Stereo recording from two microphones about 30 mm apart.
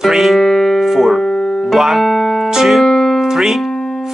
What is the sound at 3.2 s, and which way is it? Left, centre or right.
Music, centre.